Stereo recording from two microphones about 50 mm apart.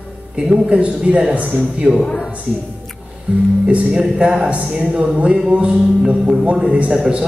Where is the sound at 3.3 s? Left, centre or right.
Right.